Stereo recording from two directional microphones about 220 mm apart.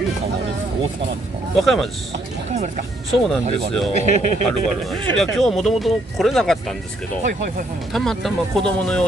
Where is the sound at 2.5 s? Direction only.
30° right (ahead or behind).